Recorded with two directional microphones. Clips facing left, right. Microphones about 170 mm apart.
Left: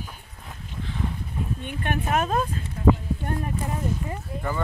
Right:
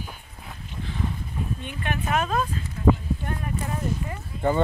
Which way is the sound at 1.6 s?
50° left (ahead or behind).